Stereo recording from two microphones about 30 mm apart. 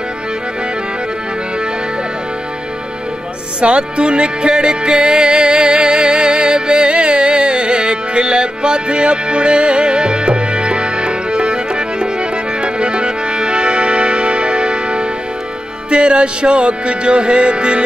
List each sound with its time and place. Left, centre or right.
3.6 s music: right